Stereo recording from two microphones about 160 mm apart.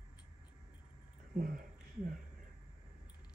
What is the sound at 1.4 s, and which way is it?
Speech, 55° right (ahead or behind).